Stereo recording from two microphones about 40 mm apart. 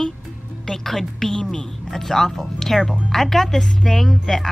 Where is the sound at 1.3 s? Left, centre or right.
Centre.